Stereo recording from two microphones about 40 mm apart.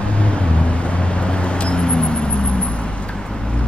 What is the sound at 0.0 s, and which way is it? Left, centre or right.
Vehicle, left.